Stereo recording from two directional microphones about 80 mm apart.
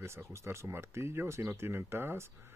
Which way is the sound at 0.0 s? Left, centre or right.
Right.